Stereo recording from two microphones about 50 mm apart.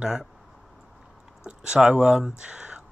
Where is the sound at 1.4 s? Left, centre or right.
Centre.